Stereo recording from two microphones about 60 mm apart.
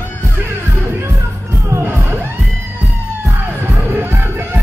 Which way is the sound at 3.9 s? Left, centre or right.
Right.